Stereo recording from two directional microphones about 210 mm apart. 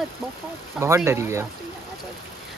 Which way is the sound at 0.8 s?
15° right (ahead or behind).